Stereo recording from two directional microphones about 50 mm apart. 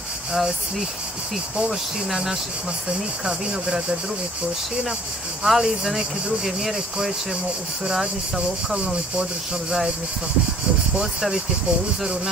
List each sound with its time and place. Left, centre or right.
0.3 s speech: centre
5.4 s speech: centre
9.2 s speech: centre
11.0 s speech: centre